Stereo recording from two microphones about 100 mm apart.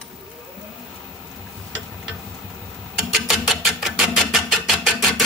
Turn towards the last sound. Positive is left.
turn(degrees=0)  # may be behind; listen again after turning